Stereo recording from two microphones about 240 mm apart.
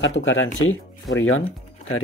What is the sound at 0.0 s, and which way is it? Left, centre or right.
Speech, left.